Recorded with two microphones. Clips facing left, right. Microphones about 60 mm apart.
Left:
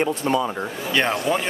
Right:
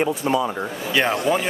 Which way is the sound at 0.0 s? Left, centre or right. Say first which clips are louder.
Right 1 dB; centre.